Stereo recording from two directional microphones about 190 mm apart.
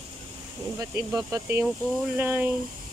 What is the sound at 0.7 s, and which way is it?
Speech, 15° right (ahead or behind).